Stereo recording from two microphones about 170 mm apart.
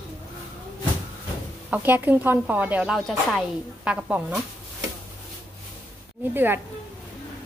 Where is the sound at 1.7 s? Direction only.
10° right (ahead or behind).